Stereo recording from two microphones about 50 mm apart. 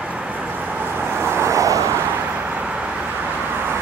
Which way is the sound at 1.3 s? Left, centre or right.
Right.